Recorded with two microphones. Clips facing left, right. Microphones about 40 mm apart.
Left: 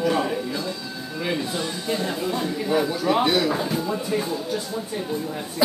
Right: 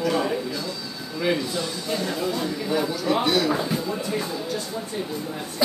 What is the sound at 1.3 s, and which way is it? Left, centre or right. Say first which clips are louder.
Speech: even; centre.